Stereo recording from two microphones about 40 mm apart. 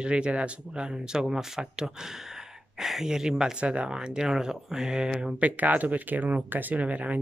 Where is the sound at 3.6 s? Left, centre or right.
Right.